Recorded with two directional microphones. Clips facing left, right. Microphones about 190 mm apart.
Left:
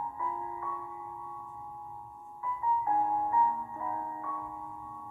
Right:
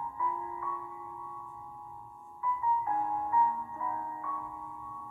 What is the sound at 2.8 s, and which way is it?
Music, 35° left (ahead or behind).